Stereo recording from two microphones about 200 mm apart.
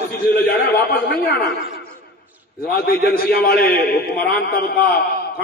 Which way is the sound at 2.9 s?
50° left (ahead or behind).